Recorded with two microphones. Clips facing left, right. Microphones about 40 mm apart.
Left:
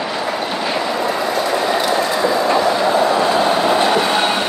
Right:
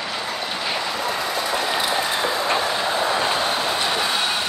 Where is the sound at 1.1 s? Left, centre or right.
Left.